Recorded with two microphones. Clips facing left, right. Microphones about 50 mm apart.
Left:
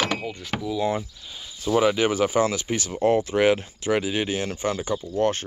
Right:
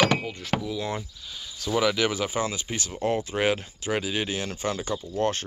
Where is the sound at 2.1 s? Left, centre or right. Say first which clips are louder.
Left 6 dB; left.